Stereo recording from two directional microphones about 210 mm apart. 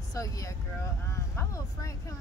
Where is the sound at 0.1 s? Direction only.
15° left (ahead or behind).